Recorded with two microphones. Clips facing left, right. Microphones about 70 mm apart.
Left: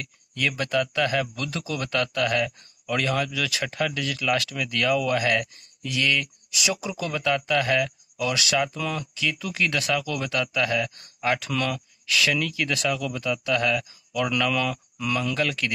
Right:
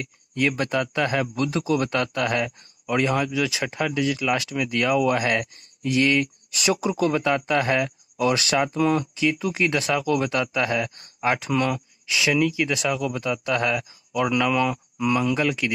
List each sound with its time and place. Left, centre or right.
0.0 s speech: right